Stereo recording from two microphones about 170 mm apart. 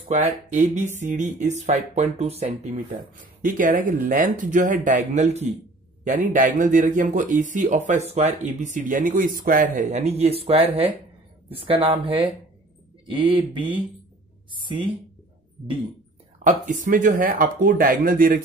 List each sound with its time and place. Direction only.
0.1 s speech: 45° right (ahead or behind)
3.4 s speech: 50° right (ahead or behind); by 13.7 s 30° right (ahead or behind)
16.8 s speech: 50° right (ahead or behind)